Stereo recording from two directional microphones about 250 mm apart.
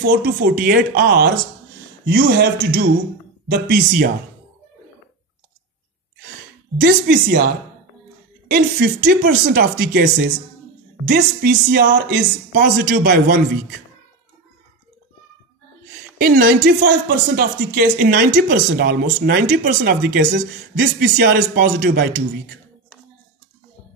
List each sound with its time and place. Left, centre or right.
0.1 s speech: right
6.8 s speech: right
8.5 s speech: right
11.1 s speech: right
16.2 s speech: right